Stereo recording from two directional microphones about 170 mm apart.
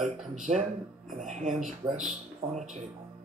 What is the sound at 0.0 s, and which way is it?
Speech, centre (ahead or behind).